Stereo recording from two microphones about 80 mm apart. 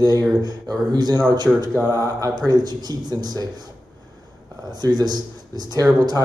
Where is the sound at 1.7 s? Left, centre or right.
Right.